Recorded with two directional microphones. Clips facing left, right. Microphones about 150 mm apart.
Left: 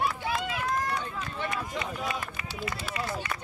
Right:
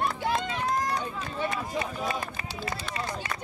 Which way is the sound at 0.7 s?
35° right (ahead or behind).